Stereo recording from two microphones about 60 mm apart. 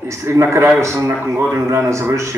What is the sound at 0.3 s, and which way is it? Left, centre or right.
A man's voice, right.